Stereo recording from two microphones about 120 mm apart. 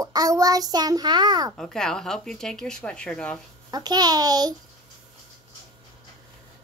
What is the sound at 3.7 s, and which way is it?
Child singing, 35° right (ahead or behind).